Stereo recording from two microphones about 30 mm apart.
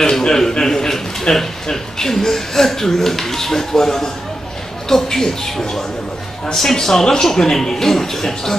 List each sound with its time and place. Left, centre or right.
0.2 s a man's voice: centre